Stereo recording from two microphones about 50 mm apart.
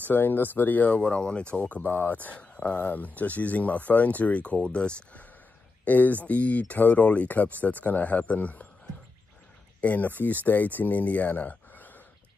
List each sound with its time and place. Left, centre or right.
0.0 s speech: left
1.0 s speech: left
1.8 s speech: left
2.1 s speech: left
5.9 s speech: left
9.8 s speech: left